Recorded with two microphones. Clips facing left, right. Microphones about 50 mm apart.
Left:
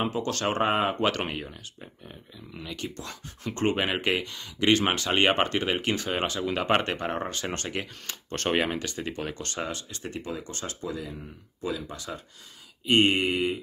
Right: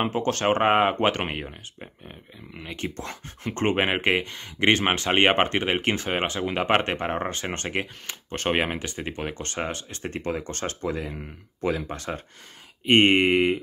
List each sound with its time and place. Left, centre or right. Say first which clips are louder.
0.0 s speech: right 4 dB; right
1.0 s speech: right 3 dB; right
8.1 s speech: right 1 dB; centre; by 12.2 s right
12.8 s mantra: right 4 dB; right